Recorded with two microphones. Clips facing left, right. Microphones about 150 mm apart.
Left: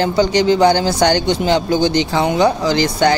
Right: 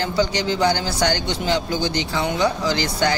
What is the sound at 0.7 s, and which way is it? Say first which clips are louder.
Speech: left 7 dB; 60° left (ahead or behind).